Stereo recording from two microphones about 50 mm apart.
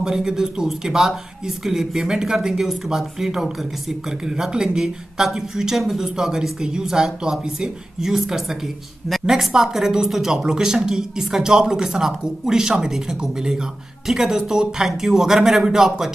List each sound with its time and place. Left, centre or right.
0.0 s speech: centre